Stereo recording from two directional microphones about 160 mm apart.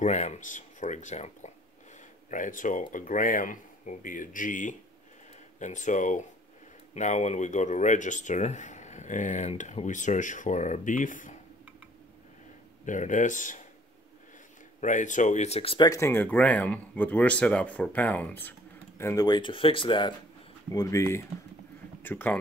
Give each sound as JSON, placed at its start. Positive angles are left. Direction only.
{"t": 0.0, "sound": "speech", "side_deg": 45}
{"t": 12.8, "sound": "speech", "side_deg": 50}
{"t": 14.8, "sound": "speech", "side_deg": 50}
{"t": 15.9, "sound": "speech", "side_deg": 15}
{"t": 20.7, "sound": "speech", "side_deg": 20}